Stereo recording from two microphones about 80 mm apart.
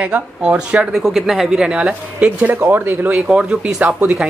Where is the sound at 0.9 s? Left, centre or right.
Centre; by 3.2 s right.